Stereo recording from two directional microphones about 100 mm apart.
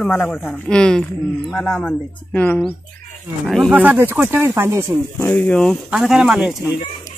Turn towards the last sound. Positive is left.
turn(degrees=-10)  # may be behind; listen again after turning